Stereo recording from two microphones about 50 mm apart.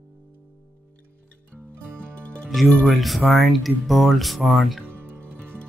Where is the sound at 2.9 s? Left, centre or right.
Centre.